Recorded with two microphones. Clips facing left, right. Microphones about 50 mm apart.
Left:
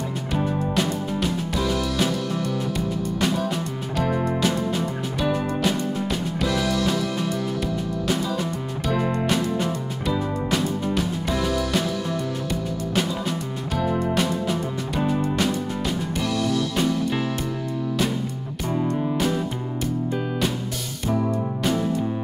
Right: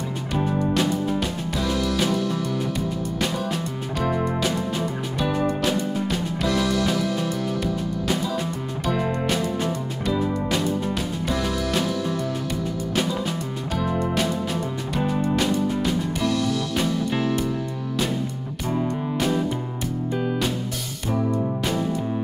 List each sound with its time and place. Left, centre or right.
0.3 s music: centre
3.9 s music: centre
8.8 s music: centre
10.9 s music: centre
13.3 s music: centre